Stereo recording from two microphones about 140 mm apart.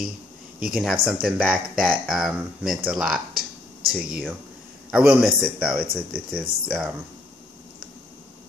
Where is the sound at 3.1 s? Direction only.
90° right.